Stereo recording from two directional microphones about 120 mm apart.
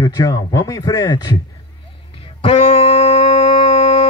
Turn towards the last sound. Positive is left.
turn(degrees=55)  # may be behind; listen again after turning